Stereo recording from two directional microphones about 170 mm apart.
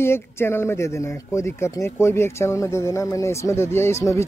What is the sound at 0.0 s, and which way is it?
Speech, 15° left (ahead or behind).